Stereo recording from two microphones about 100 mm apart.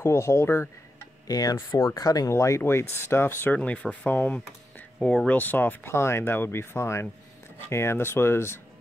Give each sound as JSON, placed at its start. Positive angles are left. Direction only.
{"t": 0.0, "sound": "speech", "side_deg": 25}
{"t": 1.2, "sound": "speech", "side_deg": 40}